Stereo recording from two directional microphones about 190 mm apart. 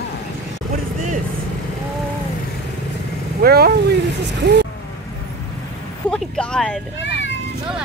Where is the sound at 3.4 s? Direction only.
55° right (ahead or behind).